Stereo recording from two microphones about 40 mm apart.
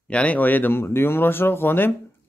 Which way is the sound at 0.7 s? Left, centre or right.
Left.